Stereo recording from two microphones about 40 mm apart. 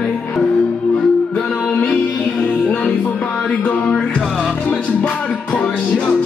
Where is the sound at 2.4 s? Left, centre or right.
Left.